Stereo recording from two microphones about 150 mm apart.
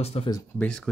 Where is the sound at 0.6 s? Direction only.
5° left (ahead or behind).